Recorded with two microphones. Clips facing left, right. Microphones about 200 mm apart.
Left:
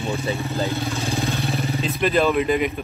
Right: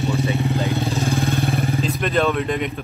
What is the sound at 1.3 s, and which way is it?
Vehicle, 50° right (ahead or behind).